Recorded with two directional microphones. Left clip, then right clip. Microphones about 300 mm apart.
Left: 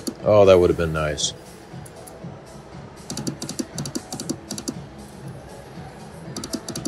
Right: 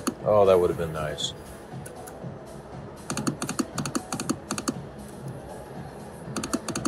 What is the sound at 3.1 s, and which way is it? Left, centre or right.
Computer keyboard, right.